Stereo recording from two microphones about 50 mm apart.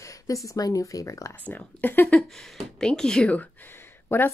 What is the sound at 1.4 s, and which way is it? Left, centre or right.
Speech, left.